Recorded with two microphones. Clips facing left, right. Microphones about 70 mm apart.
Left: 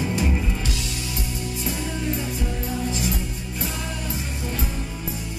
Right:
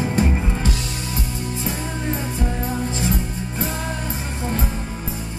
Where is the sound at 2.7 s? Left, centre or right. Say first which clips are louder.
Right 3 dB; right.